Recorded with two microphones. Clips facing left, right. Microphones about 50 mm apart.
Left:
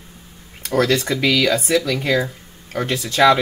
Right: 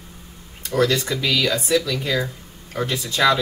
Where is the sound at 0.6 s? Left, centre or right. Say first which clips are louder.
Left 2 dB; left.